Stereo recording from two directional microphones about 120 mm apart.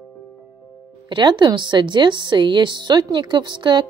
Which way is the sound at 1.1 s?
40° right (ahead or behind).